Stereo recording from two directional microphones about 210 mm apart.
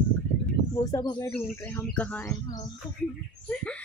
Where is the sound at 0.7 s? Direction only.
15° left (ahead or behind).